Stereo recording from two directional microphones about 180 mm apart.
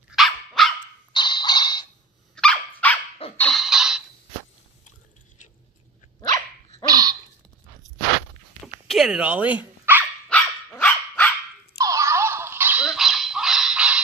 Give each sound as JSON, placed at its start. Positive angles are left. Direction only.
{"t": 0.1, "sound": "dog", "side_deg": 0}
{"t": 1.1, "sound": "music", "side_deg": 25}
{"t": 2.3, "sound": "dog", "side_deg": 5}
{"t": 3.3, "sound": "a sound", "side_deg": 5}
{"t": 6.9, "sound": "dog", "side_deg": -20}
{"t": 8.8, "sound": "dog", "side_deg": 0}
{"t": 10.3, "sound": "dog", "side_deg": 5}
{"t": 11.8, "sound": "dog", "side_deg": -15}